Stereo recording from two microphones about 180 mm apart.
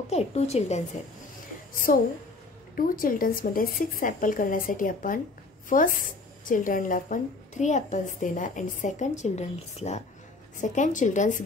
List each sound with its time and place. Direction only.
0.1 s a woman's voice: 35° left (ahead or behind)
1.9 s a woman's voice: 45° left (ahead or behind)